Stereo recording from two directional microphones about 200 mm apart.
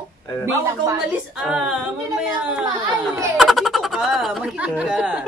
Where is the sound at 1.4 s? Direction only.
Centre (ahead or behind).